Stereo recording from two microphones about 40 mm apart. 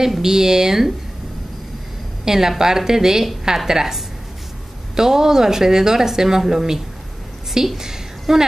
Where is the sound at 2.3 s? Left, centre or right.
Centre.